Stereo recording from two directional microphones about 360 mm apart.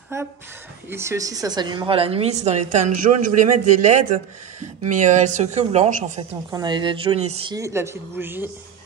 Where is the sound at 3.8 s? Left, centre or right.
Right.